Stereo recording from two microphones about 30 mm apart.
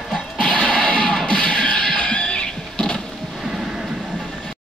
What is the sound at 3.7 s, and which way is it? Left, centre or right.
Vehicle, centre.